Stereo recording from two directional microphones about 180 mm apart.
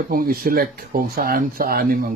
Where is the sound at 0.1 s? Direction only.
55° right (ahead or behind).